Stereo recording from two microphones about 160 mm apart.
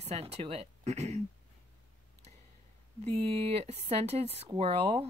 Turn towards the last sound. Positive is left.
turn(degrees=-40)  # may be behind; listen again after turning